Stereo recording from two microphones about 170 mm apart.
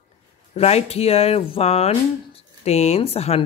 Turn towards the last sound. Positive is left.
turn(degrees=35)  # may be behind; listen again after turning